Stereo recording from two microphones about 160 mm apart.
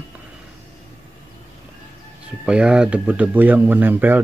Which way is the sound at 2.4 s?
5° right (ahead or behind).